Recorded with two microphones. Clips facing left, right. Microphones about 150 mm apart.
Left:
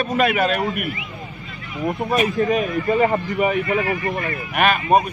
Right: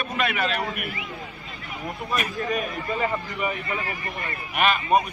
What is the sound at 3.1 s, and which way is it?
Speech, 50° left (ahead or behind).